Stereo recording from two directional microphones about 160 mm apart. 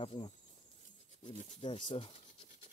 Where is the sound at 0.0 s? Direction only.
35° left (ahead or behind).